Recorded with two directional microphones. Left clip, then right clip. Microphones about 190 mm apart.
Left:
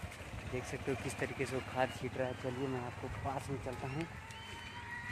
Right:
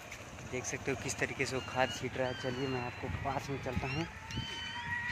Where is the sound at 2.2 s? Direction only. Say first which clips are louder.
Right 2 dB; 45° right (ahead or behind).